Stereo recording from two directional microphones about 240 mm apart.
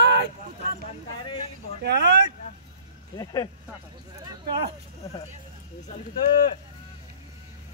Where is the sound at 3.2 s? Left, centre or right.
Centre.